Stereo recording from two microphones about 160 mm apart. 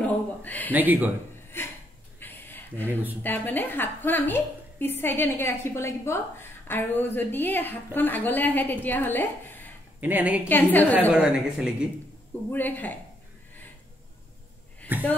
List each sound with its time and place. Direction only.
0.0 s a sound: 10° left (ahead or behind)
0.7 s a woman's voice: 10° right (ahead or behind)
2.1 s a sound: 10° left (ahead or behind)
2.9 s a woman's voice: 10° right (ahead or behind)
3.2 s a woman's voice: 10° left (ahead or behind)
9.9 s a woman's voice: 10° right (ahead or behind)
10.5 s a woman's voice: 10° left (ahead or behind)
11.1 s a woman's voice: 5° right (ahead or behind)
12.5 s a woman's voice: 10° left (ahead or behind)